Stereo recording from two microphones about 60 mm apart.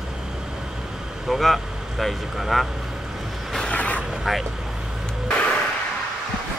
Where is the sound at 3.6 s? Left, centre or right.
Left.